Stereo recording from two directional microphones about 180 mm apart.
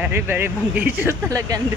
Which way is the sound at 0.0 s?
10° right (ahead or behind).